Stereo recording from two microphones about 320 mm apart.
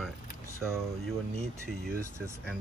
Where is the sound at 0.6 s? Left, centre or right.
Centre.